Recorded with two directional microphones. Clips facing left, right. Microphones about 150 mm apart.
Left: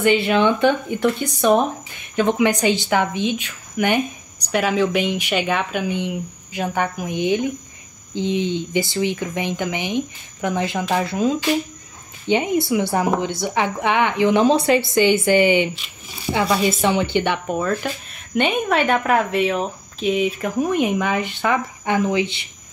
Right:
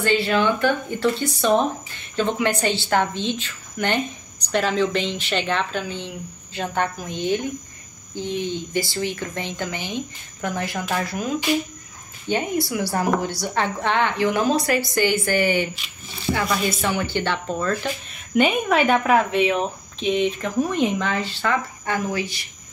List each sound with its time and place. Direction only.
0.0 s a woman's voice: 20° left (ahead or behind)
18.3 s a woman's voice: centre (ahead or behind); by 22.4 s 20° left (ahead or behind)